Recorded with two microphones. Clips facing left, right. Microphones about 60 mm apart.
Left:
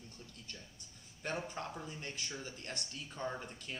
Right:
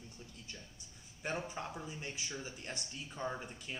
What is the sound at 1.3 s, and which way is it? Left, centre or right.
Speech, centre.